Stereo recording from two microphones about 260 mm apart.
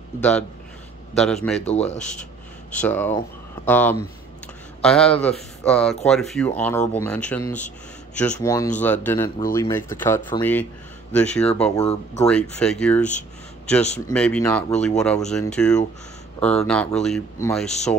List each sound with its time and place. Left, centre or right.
0.2 s speech: centre
1.7 s speech: left
2.7 s speech: centre
7.5 s speech: left
8.2 s speech: centre
11.8 s speech: left
12.3 s speech: centre